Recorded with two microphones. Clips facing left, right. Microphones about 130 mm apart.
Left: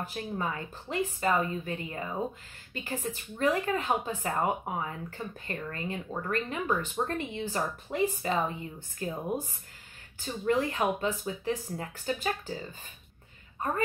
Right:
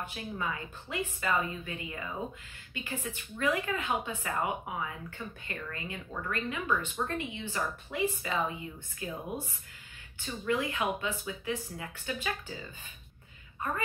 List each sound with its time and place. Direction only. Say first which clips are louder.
0.0 s speech: left 3 dB; 40° left (ahead or behind)
10.2 s speech: left 4 dB; 35° left (ahead or behind)